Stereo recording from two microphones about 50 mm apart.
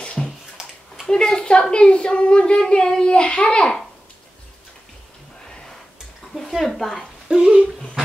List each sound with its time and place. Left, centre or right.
0.0 s bathtub: left
1.0 s speech: centre
6.6 s a woman's voice: centre
7.2 s speech: centre